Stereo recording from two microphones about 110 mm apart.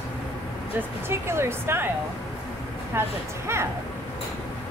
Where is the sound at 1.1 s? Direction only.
25° right (ahead or behind).